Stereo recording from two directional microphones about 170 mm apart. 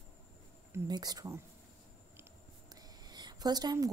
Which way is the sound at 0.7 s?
25° right (ahead or behind).